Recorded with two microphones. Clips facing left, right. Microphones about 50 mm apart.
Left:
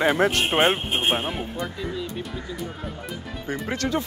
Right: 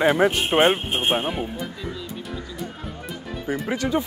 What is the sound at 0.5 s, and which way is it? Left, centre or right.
Speech, centre.